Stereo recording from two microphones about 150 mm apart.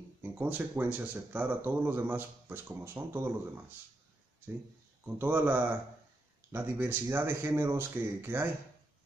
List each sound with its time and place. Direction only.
0.2 s speech: 10° right (ahead or behind)
5.0 s speech: 15° right (ahead or behind)